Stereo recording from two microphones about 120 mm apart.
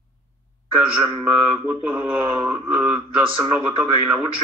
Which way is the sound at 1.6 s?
15° right (ahead or behind).